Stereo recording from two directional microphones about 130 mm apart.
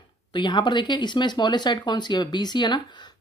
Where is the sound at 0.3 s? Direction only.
35° left (ahead or behind).